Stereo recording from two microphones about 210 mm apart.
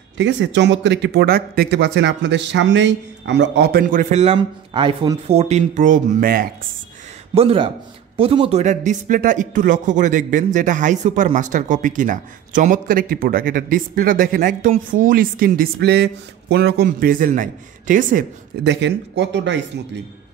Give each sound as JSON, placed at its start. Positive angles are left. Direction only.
{"t": 0.2, "sound": "speech", "side_deg": -60}
{"t": 7.3, "sound": "speech", "side_deg": -25}
{"t": 18.6, "sound": "speech", "side_deg": -55}